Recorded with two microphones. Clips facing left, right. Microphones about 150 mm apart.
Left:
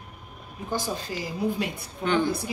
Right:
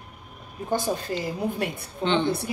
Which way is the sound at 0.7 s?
55° right (ahead or behind).